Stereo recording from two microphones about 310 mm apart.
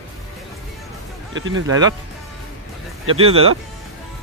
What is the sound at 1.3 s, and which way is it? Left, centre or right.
Speech, right.